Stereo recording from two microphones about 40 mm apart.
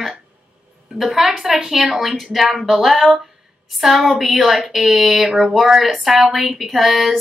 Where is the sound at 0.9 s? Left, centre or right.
Centre.